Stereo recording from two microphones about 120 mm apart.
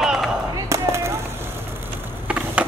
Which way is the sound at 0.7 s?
25° right (ahead or behind).